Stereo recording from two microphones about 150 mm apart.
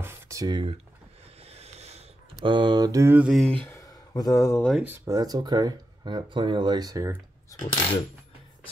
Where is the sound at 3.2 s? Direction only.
Centre (ahead or behind).